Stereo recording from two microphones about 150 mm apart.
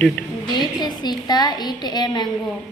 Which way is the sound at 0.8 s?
30° left (ahead or behind).